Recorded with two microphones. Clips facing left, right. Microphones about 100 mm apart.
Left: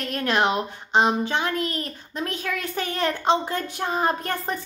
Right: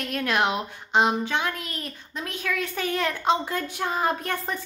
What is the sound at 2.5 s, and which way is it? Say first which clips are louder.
Speech: right 4 dB; 30° left (ahead or behind).